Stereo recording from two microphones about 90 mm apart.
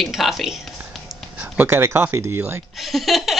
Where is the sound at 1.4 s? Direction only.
25° right (ahead or behind).